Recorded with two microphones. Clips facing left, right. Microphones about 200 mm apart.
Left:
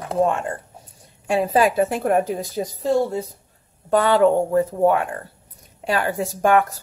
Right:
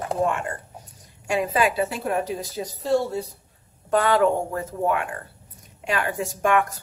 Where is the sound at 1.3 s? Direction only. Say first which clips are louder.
Left 4 dB; 35° left (ahead or behind).